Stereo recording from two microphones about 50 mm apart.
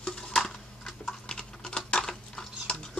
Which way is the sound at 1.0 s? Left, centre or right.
Centre.